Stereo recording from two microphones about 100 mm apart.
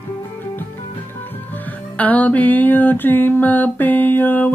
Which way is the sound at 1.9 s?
15° left (ahead or behind).